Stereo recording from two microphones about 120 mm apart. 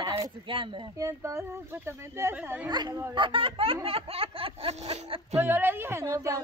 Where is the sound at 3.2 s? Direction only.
45° right (ahead or behind).